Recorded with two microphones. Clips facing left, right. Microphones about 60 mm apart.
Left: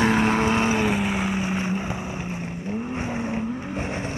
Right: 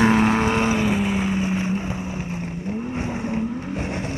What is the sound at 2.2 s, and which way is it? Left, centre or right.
Vehicle, centre.